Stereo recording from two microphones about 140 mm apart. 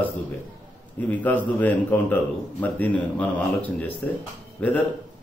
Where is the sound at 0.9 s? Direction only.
10° left (ahead or behind).